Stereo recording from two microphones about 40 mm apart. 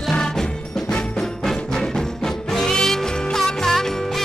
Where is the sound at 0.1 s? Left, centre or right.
Centre.